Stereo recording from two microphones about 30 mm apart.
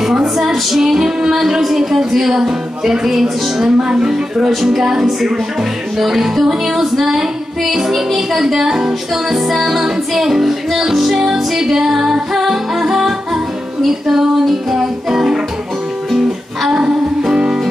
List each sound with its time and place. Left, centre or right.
0.0 s music: centre
9.5 s music: centre